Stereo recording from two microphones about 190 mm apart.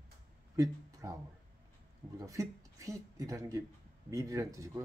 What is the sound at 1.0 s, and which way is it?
A man's voice, 15° right (ahead or behind).